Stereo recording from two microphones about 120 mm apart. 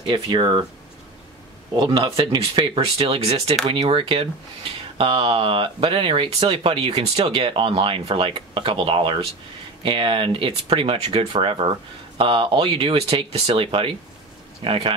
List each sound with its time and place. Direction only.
0.0 s speech: 45° right (ahead or behind)
1.8 s speech: 45° right (ahead or behind)